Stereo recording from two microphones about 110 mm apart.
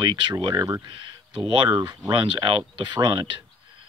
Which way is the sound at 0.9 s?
50° right (ahead or behind).